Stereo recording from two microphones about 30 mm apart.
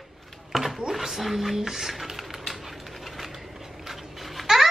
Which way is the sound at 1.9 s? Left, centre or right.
Centre.